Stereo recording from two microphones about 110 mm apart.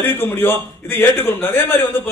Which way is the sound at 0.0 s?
20° left (ahead or behind).